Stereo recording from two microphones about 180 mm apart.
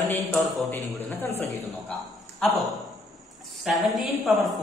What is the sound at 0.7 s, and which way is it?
Speech, 10° left (ahead or behind).